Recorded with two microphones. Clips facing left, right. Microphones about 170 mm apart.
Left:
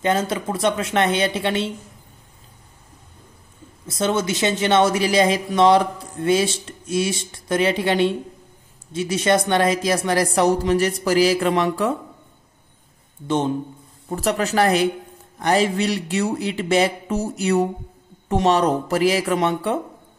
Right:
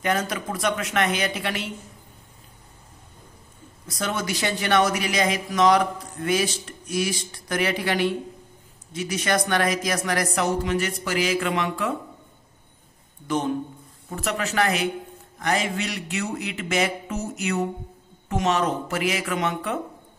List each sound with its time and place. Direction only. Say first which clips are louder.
0.0 s speech: left 4 dB; 25° left (ahead or behind)
3.8 s speech: left 7 dB; 25° left (ahead or behind)
13.3 s speech: left 3 dB; 25° left (ahead or behind)